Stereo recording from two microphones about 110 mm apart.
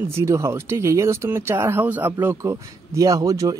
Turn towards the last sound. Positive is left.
turn(degrees=-30)  # may be behind; listen again after turning